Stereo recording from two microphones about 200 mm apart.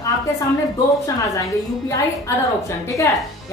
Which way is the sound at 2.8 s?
15° left (ahead or behind).